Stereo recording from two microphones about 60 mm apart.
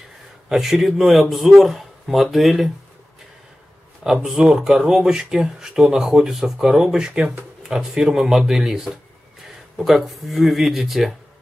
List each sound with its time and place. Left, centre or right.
0.5 s speech: centre
4.0 s speech: centre